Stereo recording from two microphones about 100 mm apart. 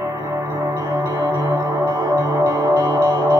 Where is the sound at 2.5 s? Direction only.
35° right (ahead or behind).